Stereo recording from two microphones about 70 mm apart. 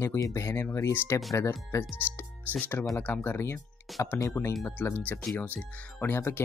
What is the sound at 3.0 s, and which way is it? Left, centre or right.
Speech, left.